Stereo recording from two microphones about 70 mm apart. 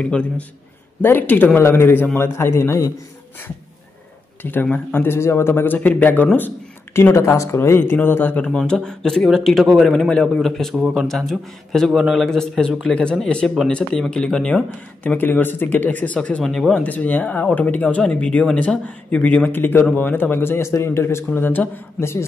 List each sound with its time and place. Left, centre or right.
0.0 s speech: centre
1.0 s speech: left
4.4 s speech: left
5.0 s speech: left
8.5 s a man's voice: centre
15.0 s speech: left
16.4 s a man's voice: centre
16.8 s speech: left
21.4 s speech: left